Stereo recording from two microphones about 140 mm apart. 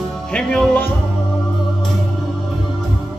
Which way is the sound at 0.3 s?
5° left (ahead or behind).